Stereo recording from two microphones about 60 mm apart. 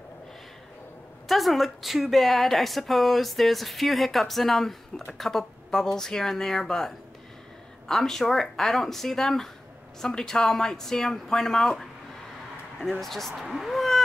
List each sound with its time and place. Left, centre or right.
1.3 s speech: centre
7.9 s speech: centre
13.0 s speech: centre